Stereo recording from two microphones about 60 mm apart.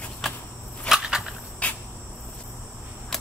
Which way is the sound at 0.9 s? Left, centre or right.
Centre.